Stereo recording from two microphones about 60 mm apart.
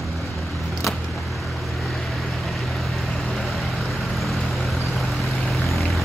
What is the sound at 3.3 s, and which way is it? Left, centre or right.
Vehicle, centre.